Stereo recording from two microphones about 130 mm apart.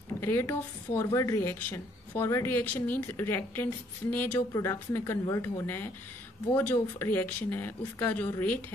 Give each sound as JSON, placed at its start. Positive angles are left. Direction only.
{"t": 0.2, "sound": "a woman's voice", "side_deg": 20}